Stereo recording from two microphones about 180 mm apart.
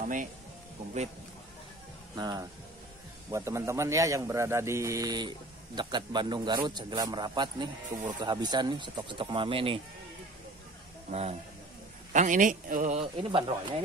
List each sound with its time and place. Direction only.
0.0 s speech: 45° right (ahead or behind)
2.1 s a man's voice: 20° right (ahead or behind)
11.1 s a man's voice: 35° right (ahead or behind)
13.0 s a man's voice: 30° right (ahead or behind)